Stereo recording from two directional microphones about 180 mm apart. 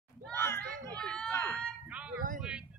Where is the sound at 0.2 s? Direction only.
10° left (ahead or behind).